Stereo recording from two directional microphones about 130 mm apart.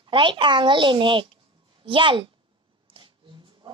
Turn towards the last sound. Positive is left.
turn(degrees=-40)  # may be behind; listen again after turning